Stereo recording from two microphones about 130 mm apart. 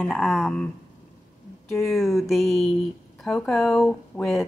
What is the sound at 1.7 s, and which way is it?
A woman's voice, centre (ahead or behind).